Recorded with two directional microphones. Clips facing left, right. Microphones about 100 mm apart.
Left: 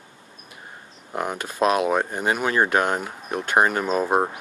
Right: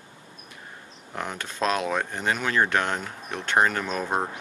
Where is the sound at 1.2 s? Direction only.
10° left (ahead or behind).